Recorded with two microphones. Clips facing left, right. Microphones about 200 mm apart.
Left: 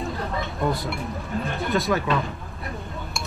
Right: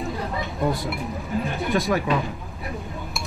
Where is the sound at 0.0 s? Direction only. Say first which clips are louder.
Even; centre (ahead or behind).